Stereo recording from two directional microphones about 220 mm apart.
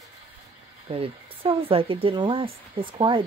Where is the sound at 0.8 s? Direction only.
25° right (ahead or behind).